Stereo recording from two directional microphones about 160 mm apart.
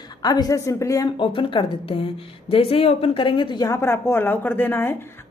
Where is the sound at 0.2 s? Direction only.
25° left (ahead or behind).